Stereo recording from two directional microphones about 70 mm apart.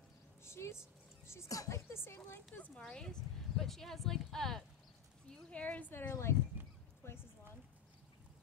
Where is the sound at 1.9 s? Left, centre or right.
Left.